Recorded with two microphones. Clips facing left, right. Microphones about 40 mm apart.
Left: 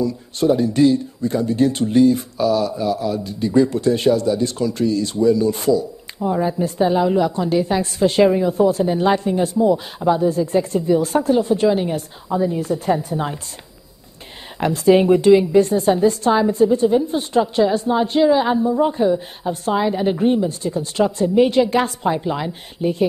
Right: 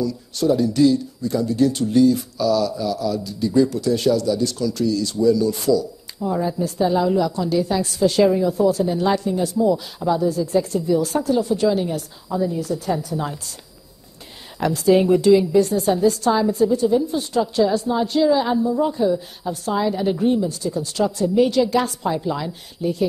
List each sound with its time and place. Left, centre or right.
0.0 s a woman's voice: left
14.6 s a woman's voice: left